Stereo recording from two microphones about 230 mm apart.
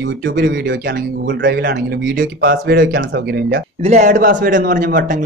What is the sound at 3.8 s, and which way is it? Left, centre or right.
Speech, right.